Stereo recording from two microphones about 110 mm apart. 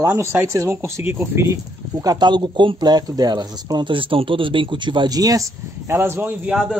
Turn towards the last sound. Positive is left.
turn(degrees=-10)  # may be behind; listen again after turning